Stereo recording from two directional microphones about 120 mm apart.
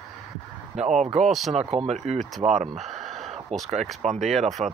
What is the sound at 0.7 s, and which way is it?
Speech, 75° right (ahead or behind).